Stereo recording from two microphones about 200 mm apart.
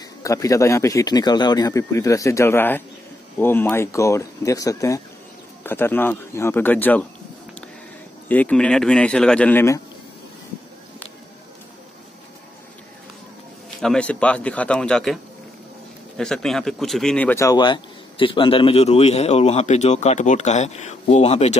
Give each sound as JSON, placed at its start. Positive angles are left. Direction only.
{"t": 0.2, "sound": "speech", "side_deg": 15}
{"t": 8.3, "sound": "speech", "side_deg": 5}
{"t": 13.7, "sound": "speech", "side_deg": 5}
{"t": 16.2, "sound": "speech", "side_deg": 0}